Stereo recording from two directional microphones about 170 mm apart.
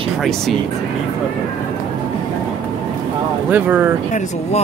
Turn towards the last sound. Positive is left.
turn(degrees=45)  # may be behind; listen again after turning